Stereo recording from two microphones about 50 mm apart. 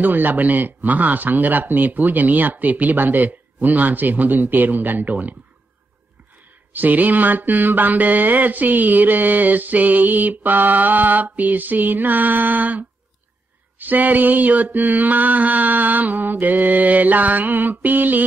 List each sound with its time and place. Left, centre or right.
0.0 s mantra: right
6.7 s mantra: right